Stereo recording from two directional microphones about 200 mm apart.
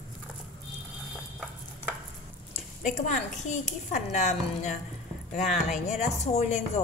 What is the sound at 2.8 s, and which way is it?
Speech, 40° left (ahead or behind).